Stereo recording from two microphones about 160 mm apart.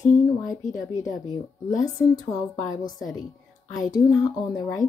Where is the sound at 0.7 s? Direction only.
20° left (ahead or behind).